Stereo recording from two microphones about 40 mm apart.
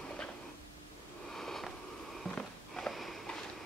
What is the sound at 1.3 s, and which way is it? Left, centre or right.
Sniff, centre.